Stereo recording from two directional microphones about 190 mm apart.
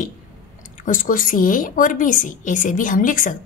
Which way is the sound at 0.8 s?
45° left (ahead or behind).